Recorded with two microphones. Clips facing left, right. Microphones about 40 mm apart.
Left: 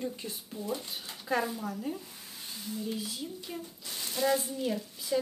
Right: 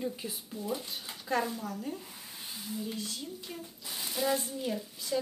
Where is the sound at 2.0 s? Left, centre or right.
Centre.